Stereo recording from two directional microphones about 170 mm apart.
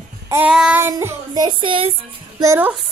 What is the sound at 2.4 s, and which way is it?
Child singing, 15° right (ahead or behind).